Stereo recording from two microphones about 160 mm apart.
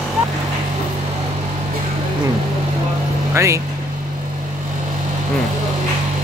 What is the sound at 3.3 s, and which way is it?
Vehicle, 20° right (ahead or behind).